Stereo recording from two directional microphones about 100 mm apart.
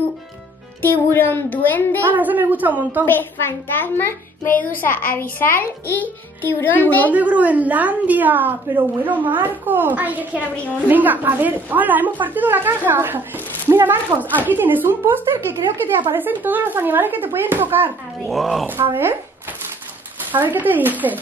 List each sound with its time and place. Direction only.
0.8 s a child's voice: 20° left (ahead or behind)
2.1 s a woman's voice: 15° right (ahead or behind)
3.1 s a child's voice: 20° left (ahead or behind)
7.1 s a woman's voice: 15° right (ahead or behind)
18.2 s speech: centre (ahead or behind)
20.2 s a woman's voice: 20° right (ahead or behind)